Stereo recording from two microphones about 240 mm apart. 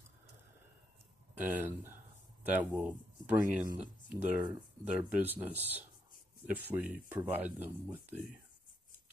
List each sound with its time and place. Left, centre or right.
1.4 s speech: centre